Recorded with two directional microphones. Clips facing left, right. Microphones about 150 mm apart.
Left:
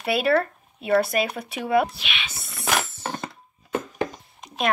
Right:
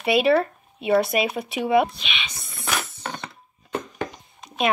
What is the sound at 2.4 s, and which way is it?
Wood, 75° left (ahead or behind).